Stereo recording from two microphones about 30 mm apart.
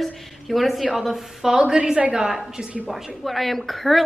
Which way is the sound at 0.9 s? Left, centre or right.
Centre.